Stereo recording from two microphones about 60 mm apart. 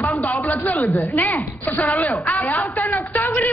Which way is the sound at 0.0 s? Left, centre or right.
Left.